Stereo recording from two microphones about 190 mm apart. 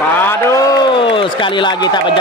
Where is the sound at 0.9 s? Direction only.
25° left (ahead or behind).